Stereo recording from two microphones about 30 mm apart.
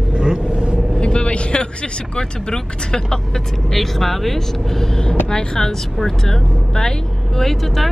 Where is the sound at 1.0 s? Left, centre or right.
Left.